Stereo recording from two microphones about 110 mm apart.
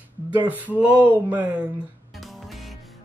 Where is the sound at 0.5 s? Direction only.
15° right (ahead or behind).